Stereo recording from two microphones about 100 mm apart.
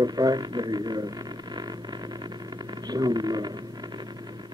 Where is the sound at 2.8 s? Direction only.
45° right (ahead or behind).